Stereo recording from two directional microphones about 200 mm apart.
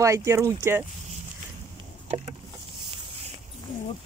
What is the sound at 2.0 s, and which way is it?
Vehicle, 30° right (ahead or behind).